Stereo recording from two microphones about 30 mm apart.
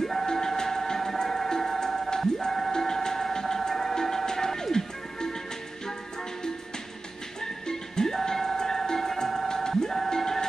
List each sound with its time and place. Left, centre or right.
0.0 s music: centre
2.0 s a sound: centre
3.9 s music: centre
7.4 s music: centre
9.5 s music: centre